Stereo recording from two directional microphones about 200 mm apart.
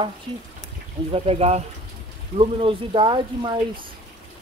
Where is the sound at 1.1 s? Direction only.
30° right (ahead or behind).